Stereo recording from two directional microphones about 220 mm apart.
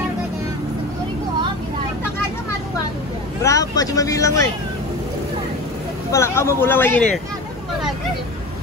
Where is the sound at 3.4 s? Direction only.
15° left (ahead or behind).